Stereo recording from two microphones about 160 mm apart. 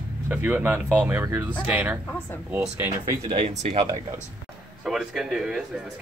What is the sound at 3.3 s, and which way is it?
Speech, 40° right (ahead or behind).